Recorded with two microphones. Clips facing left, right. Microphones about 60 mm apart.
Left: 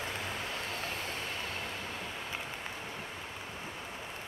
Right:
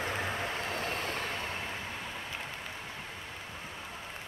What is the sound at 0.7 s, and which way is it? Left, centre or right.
Vehicle, right.